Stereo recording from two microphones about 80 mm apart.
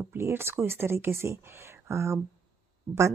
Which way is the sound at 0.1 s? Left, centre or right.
Right.